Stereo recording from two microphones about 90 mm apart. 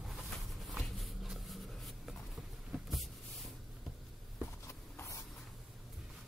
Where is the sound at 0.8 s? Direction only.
Centre (ahead or behind).